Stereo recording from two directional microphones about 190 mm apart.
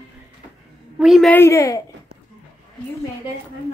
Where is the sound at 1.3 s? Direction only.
15° left (ahead or behind).